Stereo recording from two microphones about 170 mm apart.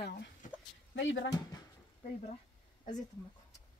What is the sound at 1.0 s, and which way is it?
Speech, 90° left.